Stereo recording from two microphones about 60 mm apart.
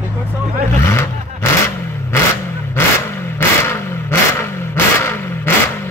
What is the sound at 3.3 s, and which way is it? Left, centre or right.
Vehicle, left.